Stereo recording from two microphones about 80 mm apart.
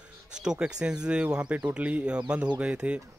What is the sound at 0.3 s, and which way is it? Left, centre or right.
A man's voice, centre.